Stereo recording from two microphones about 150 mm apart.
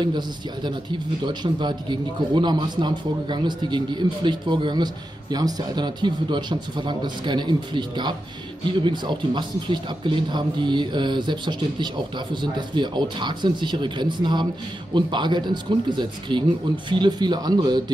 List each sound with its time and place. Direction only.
1.2 s a man's voice: 30° right (ahead or behind)